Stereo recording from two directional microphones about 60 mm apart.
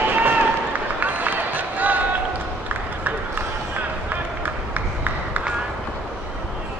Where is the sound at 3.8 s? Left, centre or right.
Right.